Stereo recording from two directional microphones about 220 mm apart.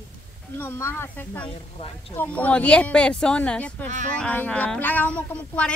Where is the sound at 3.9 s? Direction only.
35° right (ahead or behind).